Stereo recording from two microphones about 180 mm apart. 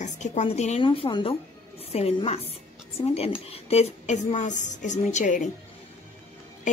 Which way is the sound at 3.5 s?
35° left (ahead or behind).